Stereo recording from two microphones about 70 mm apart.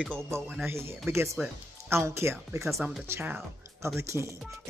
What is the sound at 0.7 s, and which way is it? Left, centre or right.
Speech, right.